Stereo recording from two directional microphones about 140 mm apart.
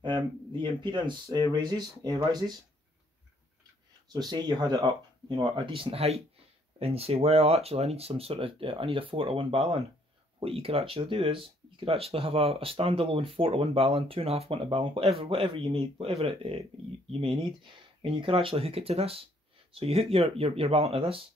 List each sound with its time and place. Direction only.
0.0 s speech: 35° right (ahead or behind)
4.1 s speech: 30° right (ahead or behind)